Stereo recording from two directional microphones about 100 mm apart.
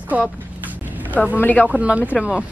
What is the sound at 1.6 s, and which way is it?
Speech, 10° right (ahead or behind).